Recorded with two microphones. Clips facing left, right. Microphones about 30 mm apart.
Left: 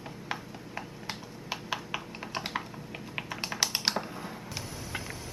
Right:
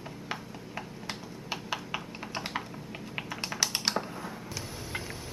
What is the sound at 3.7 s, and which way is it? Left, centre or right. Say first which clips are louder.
Computer keyboard: even; centre.